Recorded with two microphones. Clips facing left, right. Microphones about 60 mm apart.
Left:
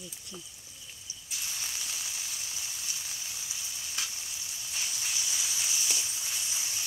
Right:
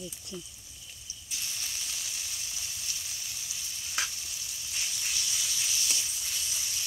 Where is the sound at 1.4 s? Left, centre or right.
Centre.